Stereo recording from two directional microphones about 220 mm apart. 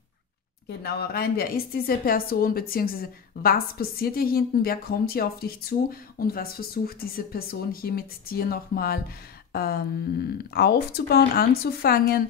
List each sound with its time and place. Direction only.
0.7 s a woman's voice: 45° left (ahead or behind)